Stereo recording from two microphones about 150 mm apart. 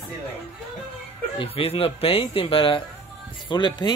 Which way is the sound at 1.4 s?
40° left (ahead or behind).